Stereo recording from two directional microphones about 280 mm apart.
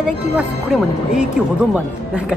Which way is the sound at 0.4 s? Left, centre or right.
Centre.